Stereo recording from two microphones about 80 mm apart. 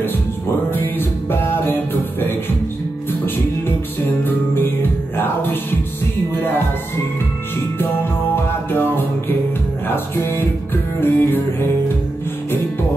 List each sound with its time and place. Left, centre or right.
0.7 s music: left
4.2 s music: left
9.8 s music: left